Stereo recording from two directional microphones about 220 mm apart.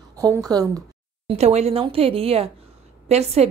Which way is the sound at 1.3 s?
30° right (ahead or behind).